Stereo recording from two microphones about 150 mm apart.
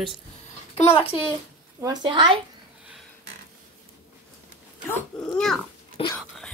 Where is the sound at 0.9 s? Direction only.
40° left (ahead or behind).